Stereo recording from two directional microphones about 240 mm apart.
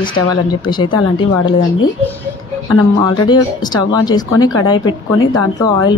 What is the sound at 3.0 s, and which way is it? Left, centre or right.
Speech, centre.